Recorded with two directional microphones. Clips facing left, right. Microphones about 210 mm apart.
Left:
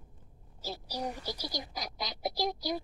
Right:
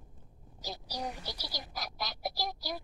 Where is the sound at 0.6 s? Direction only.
10° left (ahead or behind).